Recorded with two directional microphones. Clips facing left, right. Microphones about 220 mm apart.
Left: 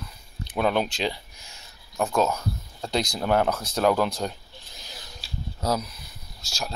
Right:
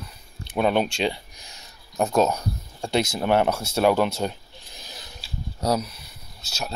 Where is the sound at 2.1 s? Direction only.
20° right (ahead or behind).